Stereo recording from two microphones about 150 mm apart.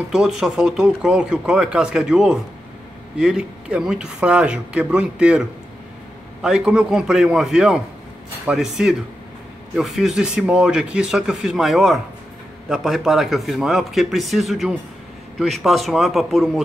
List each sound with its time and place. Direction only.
0.1 s speech: 5° right (ahead or behind)